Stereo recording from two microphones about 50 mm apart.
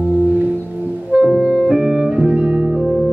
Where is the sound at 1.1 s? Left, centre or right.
Right.